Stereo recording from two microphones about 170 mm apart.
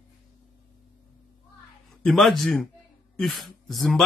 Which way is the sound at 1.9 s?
Centre (ahead or behind).